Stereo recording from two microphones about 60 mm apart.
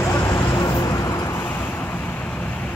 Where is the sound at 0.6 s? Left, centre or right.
Left.